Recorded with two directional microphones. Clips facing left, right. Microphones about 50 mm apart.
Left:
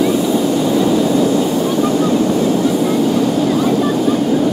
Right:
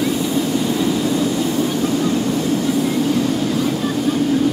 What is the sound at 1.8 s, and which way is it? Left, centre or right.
Ocean, left.